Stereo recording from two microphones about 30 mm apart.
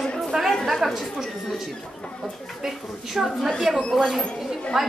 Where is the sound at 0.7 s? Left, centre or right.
Centre.